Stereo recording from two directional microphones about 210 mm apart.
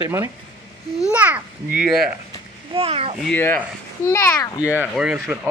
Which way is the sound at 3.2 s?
10° left (ahead or behind).